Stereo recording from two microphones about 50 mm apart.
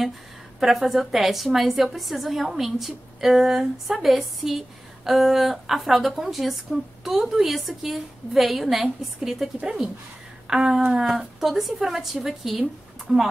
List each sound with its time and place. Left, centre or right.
0.6 s a woman's voice: centre
9.6 s speech: centre